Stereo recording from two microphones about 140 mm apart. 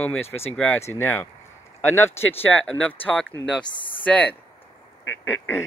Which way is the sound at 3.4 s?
35° left (ahead or behind).